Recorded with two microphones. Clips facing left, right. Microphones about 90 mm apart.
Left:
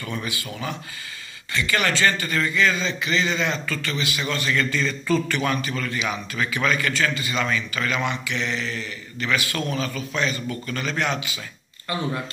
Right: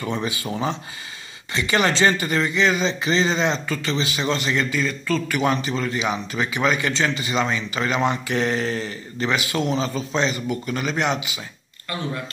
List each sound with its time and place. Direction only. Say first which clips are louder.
0.0 s a man's voice: right 5 dB; 25° right (ahead or behind)
8.1 s speech: right 5 dB; 40° right (ahead or behind)
9.3 s a man's voice: right 2 dB; 20° right (ahead or behind)